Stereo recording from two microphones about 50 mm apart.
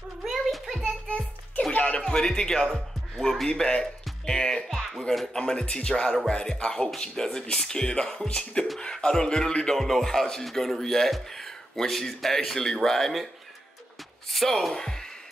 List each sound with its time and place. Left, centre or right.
0.2 s a sound: centre
0.8 s music: left
2.0 s a man's voice: centre
3.4 s speech: centre
4.6 s music: centre
5.1 s a man's voice: centre
14.3 s speech: centre